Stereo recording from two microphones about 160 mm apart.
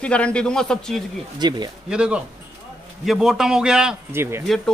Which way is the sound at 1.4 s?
25° right (ahead or behind).